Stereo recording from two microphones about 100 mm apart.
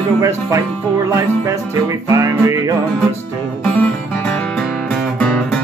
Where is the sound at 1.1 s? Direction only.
35° right (ahead or behind).